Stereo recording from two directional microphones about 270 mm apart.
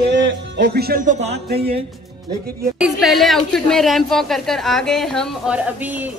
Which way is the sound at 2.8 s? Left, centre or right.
Centre.